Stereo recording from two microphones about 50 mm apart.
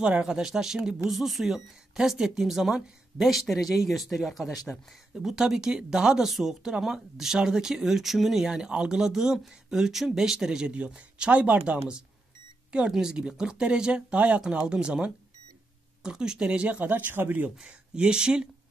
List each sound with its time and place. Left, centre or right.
0.0 s speech: centre
8.5 s speech: centre
12.9 s speech: centre; by 17.1 s right
17.1 s speech: right
17.6 s speech: centre